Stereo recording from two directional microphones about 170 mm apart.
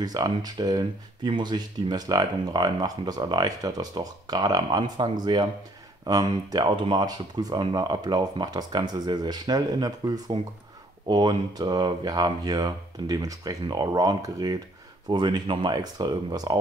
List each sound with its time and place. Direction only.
0.0 s speech: 25° right (ahead or behind)